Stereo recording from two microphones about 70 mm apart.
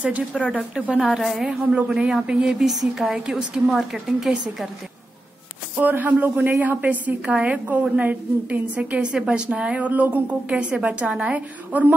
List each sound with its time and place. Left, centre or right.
0.3 s speech: centre
1.5 s a woman's voice: centre
5.8 s a woman's voice: right